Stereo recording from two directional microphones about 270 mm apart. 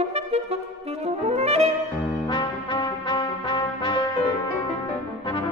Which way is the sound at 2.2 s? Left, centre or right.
Centre.